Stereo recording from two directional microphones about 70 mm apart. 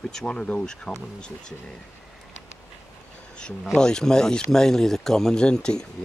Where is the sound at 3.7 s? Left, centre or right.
Centre.